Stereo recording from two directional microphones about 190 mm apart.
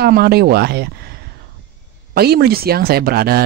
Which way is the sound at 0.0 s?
55° right (ahead or behind).